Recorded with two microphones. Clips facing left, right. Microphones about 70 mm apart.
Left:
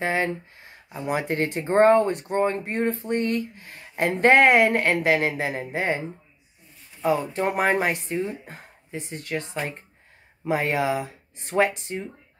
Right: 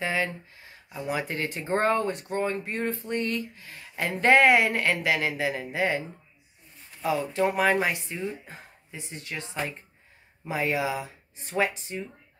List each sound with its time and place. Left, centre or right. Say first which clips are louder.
0.0 s speech: left 4 dB; left
7.1 s speech: left 2 dB; left